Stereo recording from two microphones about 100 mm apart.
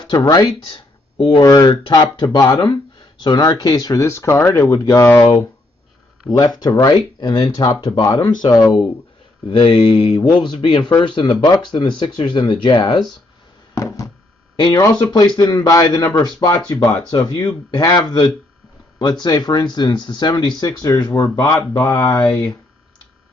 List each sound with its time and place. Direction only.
0.0 s speech: 45° left (ahead or behind)
0.5 s speech: 55° left (ahead or behind)
1.4 s speech: 35° left (ahead or behind)
1.7 s speech: 50° left (ahead or behind); by 5.3 s 25° left (ahead or behind)
6.3 s speech: 45° left (ahead or behind)
9.6 s speech: 50° left (ahead or behind)
13.7 s a sound: 35° left (ahead or behind)
14.8 s speech: 40° left (ahead or behind)
19.2 s speech: 45° left (ahead or behind)
22.2 s speech: 5° left (ahead or behind)